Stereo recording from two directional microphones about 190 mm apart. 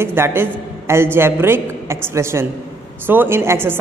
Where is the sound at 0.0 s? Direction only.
10° right (ahead or behind).